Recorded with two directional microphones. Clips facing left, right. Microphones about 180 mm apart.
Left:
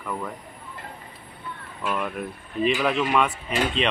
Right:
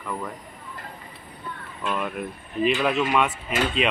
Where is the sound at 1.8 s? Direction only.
Centre (ahead or behind).